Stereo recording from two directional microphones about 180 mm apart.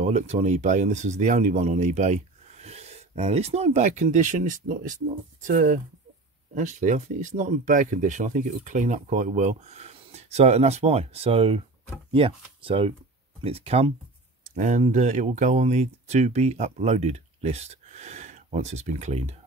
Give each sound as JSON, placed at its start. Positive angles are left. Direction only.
{"t": 0.0, "sound": "speech", "side_deg": -40}